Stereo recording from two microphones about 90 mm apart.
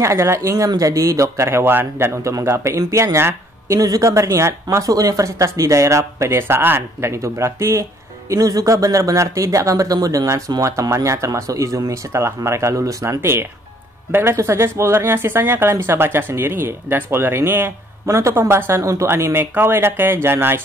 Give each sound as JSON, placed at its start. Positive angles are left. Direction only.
{"t": 0.0, "sound": "speech", "side_deg": -30}